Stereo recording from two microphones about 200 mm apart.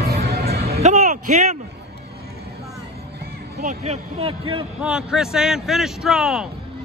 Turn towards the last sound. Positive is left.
turn(degrees=-5)  # may be behind; listen again after turning